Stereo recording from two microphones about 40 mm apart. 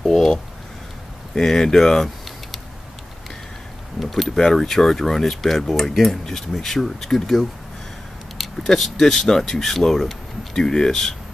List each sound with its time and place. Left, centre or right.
0.0 s speech: centre
4.0 s speech: centre
10.5 s speech: centre